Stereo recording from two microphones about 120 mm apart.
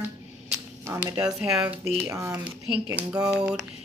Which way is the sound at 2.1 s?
25° right (ahead or behind).